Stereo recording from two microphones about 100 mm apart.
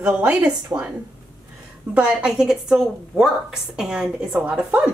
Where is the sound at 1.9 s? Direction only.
10° right (ahead or behind).